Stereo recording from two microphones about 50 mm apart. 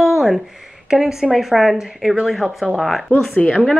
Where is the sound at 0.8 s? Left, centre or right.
Centre.